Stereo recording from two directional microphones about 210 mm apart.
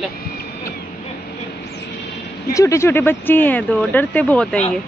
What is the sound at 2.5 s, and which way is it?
Speech, 15° left (ahead or behind).